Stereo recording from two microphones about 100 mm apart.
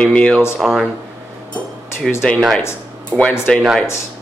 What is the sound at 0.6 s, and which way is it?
Speech, 5° right (ahead or behind).